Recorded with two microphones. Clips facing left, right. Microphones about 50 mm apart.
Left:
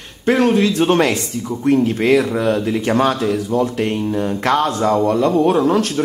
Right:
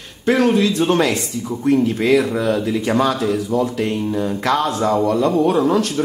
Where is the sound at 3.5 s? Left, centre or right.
Left.